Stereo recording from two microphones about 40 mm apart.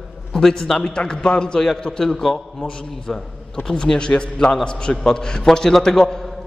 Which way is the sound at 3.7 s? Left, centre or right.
Left.